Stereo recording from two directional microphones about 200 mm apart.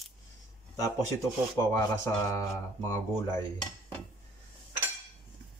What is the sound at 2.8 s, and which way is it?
Speech, 15° left (ahead or behind).